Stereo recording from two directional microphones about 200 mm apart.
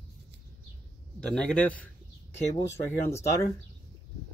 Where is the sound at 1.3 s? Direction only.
5° left (ahead or behind).